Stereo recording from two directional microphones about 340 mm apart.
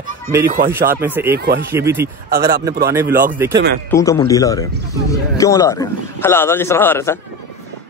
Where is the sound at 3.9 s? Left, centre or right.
Centre.